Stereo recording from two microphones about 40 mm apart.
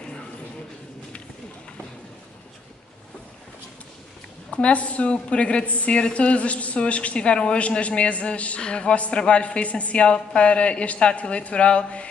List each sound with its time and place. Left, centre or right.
4.5 s a woman's voice: left